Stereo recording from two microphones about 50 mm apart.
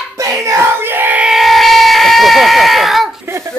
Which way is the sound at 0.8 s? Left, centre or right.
Right.